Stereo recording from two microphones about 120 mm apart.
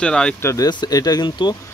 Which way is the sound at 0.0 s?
10° left (ahead or behind).